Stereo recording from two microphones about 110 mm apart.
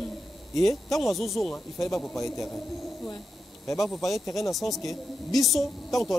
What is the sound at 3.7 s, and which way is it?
Speech, 5° left (ahead or behind).